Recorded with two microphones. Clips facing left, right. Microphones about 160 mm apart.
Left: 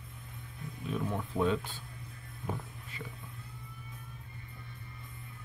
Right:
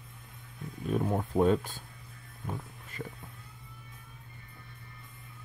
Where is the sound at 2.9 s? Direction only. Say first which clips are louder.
Right 5 dB; 45° right (ahead or behind).